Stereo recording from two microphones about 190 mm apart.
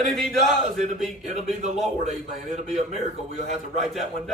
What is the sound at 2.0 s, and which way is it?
A man's voice, centre (ahead or behind).